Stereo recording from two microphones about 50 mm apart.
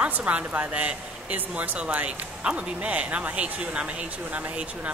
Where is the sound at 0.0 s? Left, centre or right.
Right.